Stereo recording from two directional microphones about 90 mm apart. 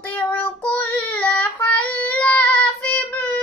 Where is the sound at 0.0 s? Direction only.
15° left (ahead or behind).